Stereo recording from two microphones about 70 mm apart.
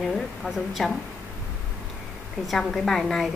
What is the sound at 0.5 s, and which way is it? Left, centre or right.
Speech, centre.